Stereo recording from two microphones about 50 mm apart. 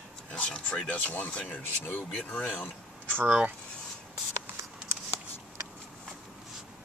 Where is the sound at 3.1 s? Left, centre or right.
Right.